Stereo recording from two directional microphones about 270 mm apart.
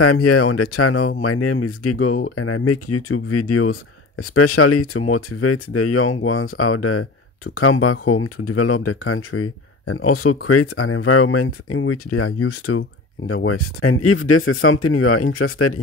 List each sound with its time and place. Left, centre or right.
0.0 s speech: left